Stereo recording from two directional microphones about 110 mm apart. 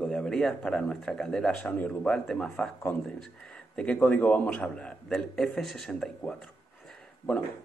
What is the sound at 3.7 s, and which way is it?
A man's voice, 10° left (ahead or behind).